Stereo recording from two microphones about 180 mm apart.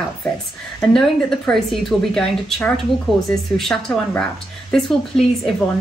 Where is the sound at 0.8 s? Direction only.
Centre (ahead or behind).